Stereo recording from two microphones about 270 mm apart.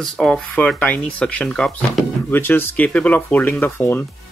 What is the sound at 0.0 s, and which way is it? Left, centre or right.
Speech, centre.